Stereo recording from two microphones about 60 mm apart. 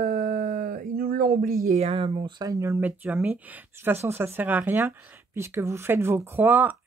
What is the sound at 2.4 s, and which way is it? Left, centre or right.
Speech, right.